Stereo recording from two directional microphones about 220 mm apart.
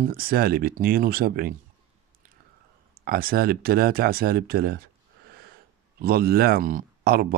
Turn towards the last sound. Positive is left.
turn(degrees=-45)  # may be behind; listen again after turning